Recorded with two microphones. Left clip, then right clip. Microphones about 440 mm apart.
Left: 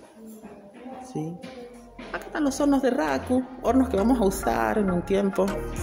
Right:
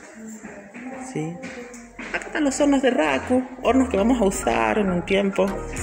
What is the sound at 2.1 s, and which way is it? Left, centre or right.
Speech, left.